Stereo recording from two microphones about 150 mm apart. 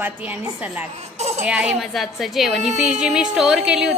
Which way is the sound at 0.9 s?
45° right (ahead or behind).